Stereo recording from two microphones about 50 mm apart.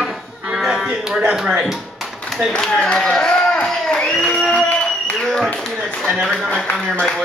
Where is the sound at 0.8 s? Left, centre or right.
Centre.